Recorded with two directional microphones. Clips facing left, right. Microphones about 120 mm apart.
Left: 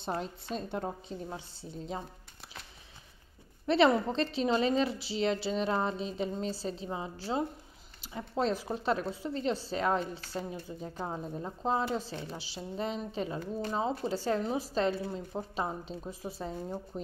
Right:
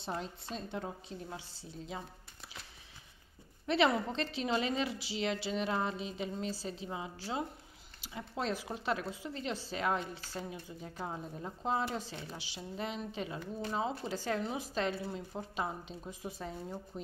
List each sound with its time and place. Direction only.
0.0 s a woman's voice: 50° left (ahead or behind)
3.6 s a woman's voice: 35° left (ahead or behind)